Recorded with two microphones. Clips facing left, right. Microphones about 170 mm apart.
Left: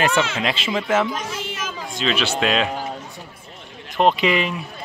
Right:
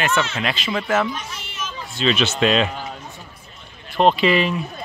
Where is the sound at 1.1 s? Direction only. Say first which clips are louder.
Left 5 dB; 90° left.